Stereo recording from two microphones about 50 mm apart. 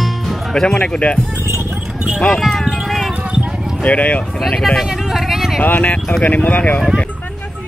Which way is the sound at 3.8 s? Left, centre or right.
Left.